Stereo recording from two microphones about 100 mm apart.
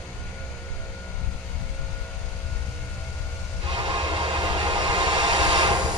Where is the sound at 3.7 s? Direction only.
55° right (ahead or behind).